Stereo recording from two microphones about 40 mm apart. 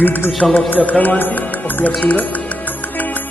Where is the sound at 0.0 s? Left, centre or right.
Left.